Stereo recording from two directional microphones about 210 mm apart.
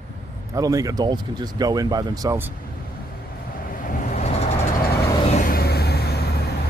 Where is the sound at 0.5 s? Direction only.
15° right (ahead or behind).